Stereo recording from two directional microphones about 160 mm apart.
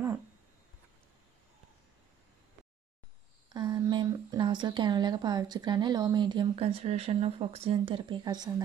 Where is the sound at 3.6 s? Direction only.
25° right (ahead or behind).